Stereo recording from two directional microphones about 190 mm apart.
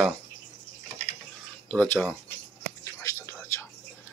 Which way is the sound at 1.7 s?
10° left (ahead or behind).